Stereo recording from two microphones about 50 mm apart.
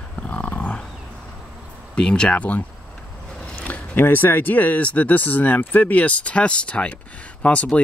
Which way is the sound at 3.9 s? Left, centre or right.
Left.